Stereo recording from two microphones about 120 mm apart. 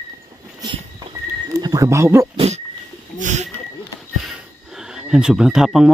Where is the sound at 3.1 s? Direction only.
90° right.